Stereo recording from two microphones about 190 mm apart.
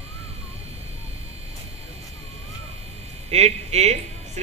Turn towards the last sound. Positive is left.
turn(degrees=-35)  # may be behind; listen again after turning